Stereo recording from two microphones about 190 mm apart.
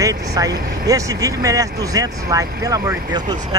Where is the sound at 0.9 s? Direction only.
15° right (ahead or behind).